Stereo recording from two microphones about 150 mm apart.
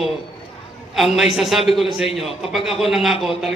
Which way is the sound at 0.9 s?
Centre (ahead or behind).